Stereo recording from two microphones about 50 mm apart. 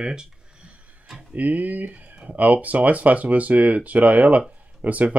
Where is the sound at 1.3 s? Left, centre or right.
Right.